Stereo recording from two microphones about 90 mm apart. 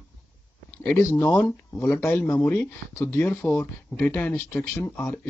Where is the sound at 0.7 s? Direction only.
25° left (ahead or behind).